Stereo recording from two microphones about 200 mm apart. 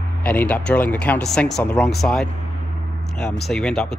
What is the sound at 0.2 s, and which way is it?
Speech, 5° left (ahead or behind).